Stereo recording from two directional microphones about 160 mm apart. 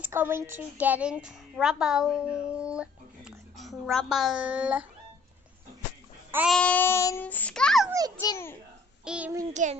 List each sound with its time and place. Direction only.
0.0 s a woman's voice: 15° right (ahead or behind)
6.5 s a child's voice: 10° left (ahead or behind)
8.2 s a child's voice: 20° left (ahead or behind)
9.0 s child singing: 5° right (ahead or behind)
9.5 s a child's voice: 45° right (ahead or behind)